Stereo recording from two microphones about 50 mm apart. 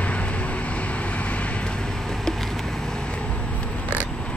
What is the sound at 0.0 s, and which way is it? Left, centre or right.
Vehicle, left.